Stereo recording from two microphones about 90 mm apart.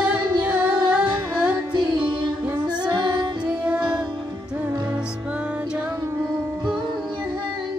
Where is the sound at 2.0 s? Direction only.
20° right (ahead or behind).